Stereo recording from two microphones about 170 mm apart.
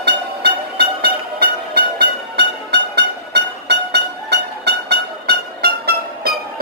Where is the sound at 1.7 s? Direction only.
80° right.